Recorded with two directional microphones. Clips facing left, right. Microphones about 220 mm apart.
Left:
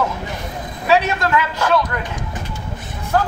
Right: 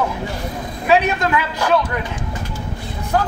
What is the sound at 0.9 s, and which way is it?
Speech, 15° right (ahead or behind).